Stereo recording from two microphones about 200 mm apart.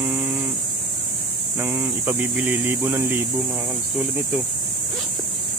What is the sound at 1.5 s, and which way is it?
Speech, 10° right (ahead or behind).